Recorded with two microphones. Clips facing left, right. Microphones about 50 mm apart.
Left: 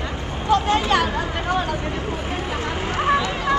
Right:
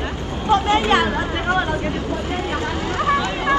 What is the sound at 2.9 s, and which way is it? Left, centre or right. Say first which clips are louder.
Hubbub: even; left.